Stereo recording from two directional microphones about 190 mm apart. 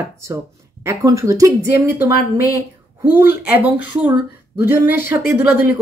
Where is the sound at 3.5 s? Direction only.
10° right (ahead or behind).